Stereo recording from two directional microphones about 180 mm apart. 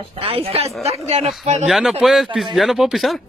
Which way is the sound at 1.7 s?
5° right (ahead or behind).